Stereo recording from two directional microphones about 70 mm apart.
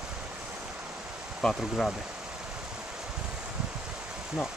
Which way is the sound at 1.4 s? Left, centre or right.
Centre.